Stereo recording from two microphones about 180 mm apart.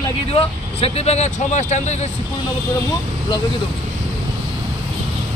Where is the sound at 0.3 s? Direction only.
35° left (ahead or behind).